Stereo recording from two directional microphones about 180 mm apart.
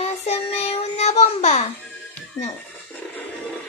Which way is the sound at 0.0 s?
35° left (ahead or behind).